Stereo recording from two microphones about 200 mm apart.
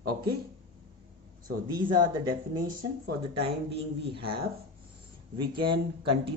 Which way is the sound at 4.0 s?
25° right (ahead or behind).